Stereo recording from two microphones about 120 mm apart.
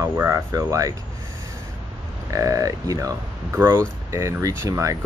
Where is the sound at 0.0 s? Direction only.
25° right (ahead or behind).